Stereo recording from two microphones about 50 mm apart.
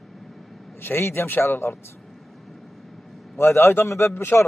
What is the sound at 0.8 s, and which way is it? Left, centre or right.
Speech, left.